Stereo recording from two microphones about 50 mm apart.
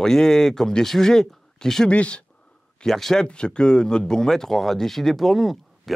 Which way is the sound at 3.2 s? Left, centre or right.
Centre.